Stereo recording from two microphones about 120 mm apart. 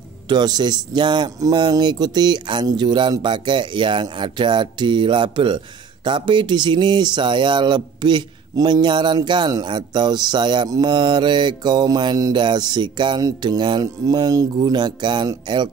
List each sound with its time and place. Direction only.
0.3 s speech: 35° right (ahead or behind)